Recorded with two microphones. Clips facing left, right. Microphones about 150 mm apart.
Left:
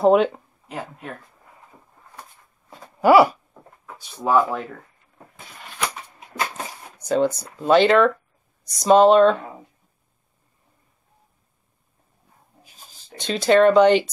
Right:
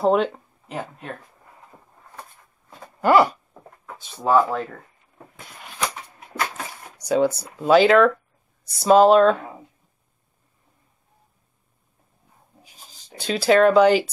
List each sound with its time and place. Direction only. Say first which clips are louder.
0.0 s speech: left 3 dB; centre (ahead or behind)
3.0 s a sound: left 3 dB; 5° left (ahead or behind)
3.8 s speech: right 1 dB; 5° left (ahead or behind)
6.1 s a sound: even; 25° left (ahead or behind)
7.1 s speech: even; 10° right (ahead or behind)
13.2 s speech: left 1 dB; 5° right (ahead or behind)